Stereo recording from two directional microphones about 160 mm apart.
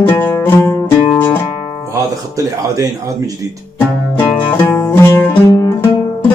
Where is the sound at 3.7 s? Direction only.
10° left (ahead or behind).